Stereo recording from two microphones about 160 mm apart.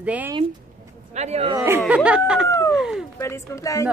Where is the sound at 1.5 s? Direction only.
15° right (ahead or behind).